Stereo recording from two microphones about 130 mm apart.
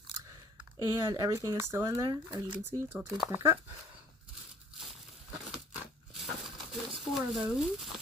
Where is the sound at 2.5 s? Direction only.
15° right (ahead or behind).